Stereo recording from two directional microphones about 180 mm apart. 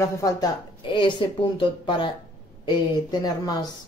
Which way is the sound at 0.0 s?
20° left (ahead or behind).